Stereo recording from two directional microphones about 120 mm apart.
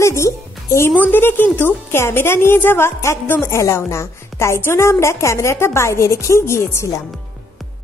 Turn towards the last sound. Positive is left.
turn(degrees=25)  # may be behind; listen again after turning